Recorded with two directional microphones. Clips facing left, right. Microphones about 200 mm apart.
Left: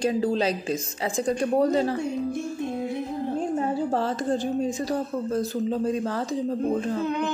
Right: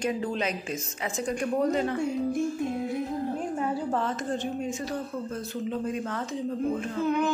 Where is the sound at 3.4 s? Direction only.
30° left (ahead or behind).